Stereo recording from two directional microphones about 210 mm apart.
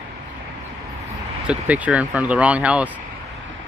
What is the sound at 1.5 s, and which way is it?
Speech, 5° right (ahead or behind).